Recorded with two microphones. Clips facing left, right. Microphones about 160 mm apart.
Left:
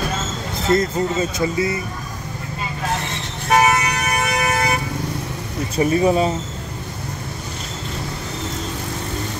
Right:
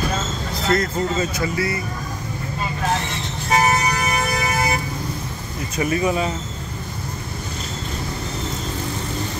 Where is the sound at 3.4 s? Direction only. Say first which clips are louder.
Left 2 dB; 70° left (ahead or behind).